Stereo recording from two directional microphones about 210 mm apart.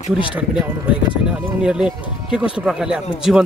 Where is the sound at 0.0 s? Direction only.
25° left (ahead or behind).